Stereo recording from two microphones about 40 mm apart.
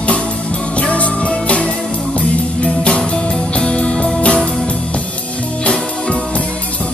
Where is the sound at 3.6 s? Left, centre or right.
Left.